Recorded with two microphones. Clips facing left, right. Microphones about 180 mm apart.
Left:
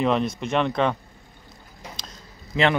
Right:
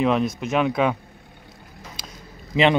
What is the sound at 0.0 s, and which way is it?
Speech, centre (ahead or behind).